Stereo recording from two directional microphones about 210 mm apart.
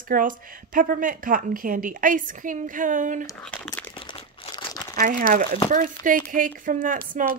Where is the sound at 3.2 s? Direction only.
10° left (ahead or behind).